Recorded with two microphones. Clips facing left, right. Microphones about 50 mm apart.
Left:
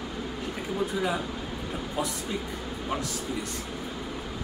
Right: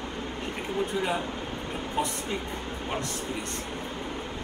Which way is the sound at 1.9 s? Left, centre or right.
Right.